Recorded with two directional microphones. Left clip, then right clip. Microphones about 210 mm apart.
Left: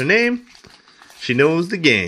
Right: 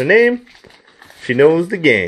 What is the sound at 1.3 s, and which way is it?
Speech, 40° left (ahead or behind).